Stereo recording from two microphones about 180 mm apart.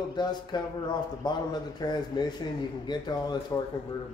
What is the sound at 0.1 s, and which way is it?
A man's voice, 25° left (ahead or behind).